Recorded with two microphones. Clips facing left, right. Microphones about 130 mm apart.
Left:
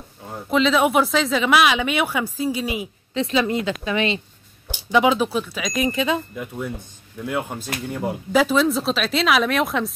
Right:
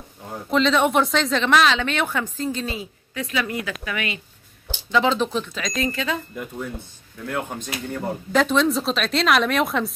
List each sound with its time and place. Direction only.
0.3 s speech: centre (ahead or behind)
3.2 s speech: 25° left (ahead or behind)
4.6 s speech: 10° left (ahead or behind)
5.8 s speech: 20° left (ahead or behind)
6.3 s speech: centre (ahead or behind)